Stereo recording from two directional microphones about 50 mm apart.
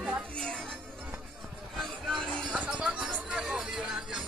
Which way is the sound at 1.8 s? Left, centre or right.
Centre.